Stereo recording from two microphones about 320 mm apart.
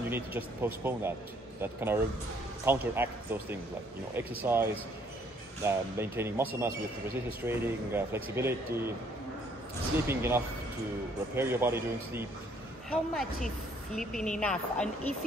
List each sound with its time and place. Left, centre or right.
0.1 s speech: centre
10.0 s speech: centre